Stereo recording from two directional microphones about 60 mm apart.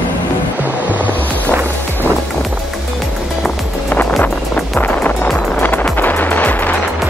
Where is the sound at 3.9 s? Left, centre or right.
Left.